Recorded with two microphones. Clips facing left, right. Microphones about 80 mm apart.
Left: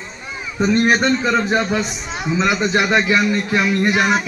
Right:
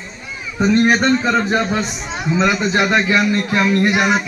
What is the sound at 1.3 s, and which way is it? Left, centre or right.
A man's voice, centre.